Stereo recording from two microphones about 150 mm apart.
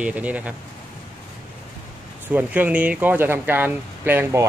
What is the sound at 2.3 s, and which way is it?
Speech, 10° right (ahead or behind).